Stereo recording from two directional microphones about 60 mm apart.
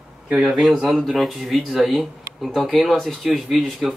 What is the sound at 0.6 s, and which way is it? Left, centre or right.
A man's voice, centre.